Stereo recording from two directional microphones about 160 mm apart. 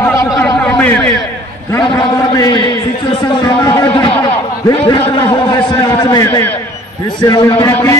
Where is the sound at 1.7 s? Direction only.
15° left (ahead or behind).